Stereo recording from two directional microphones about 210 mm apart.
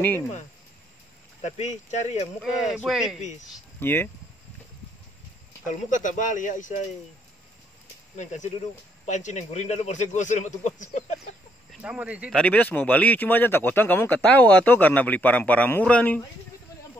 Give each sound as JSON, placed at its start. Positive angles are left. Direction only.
{"t": 1.4, "sound": "speech", "side_deg": 35}
{"t": 2.4, "sound": "speech", "side_deg": 0}
{"t": 3.8, "sound": "speech", "side_deg": 10}
{"t": 5.7, "sound": "speech", "side_deg": 35}
{"t": 8.2, "sound": "speech", "side_deg": 35}
{"t": 11.8, "sound": "speech", "side_deg": -5}
{"t": 12.4, "sound": "speech", "side_deg": 5}